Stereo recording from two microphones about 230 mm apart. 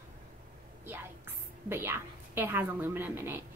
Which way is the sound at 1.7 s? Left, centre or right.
Centre.